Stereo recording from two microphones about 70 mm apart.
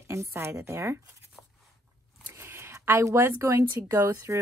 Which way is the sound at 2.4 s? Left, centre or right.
Right.